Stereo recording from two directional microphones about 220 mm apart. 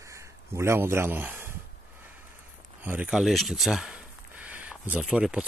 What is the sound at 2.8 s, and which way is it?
Speech, 5° right (ahead or behind).